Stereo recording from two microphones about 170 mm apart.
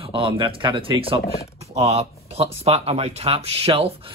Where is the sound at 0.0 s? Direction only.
30° right (ahead or behind).